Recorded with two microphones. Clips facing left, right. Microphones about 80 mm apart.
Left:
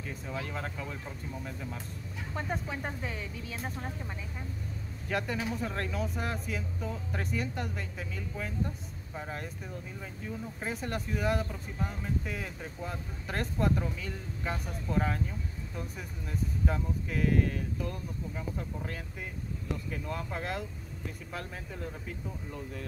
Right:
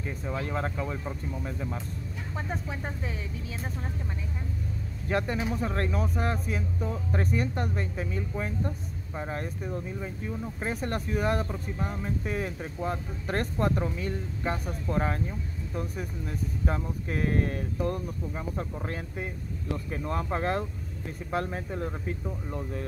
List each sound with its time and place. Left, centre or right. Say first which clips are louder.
0.3 s speech: right 6 dB; right
2.3 s speech: even; centre
5.0 s speech: right 4 dB; right
10.6 s speech: right 4 dB; right
16.6 s speech: right 3 dB; right